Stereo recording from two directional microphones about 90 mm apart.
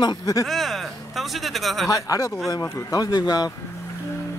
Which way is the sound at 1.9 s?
40° left (ahead or behind).